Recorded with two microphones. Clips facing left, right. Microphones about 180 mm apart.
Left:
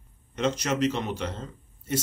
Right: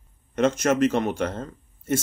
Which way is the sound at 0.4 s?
50° right (ahead or behind).